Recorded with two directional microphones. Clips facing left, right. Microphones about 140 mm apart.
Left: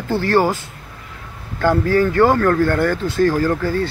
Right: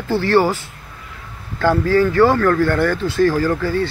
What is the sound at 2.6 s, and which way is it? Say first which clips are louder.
Speech: even; 45° left (ahead or behind).